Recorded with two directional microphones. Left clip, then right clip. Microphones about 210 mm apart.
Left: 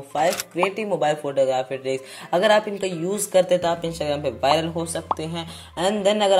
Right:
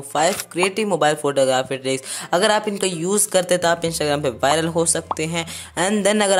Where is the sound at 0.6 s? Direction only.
25° right (ahead or behind).